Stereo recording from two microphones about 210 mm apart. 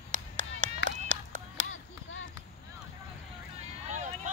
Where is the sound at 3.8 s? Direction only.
35° right (ahead or behind).